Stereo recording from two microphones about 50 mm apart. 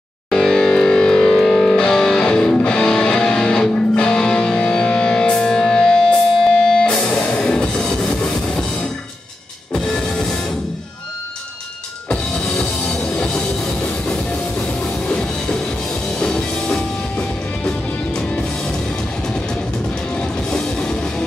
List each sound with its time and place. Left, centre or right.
0.3 s music: centre
9.9 s music: centre
12.1 s music: centre
15.0 s music: centre
20.2 s music: centre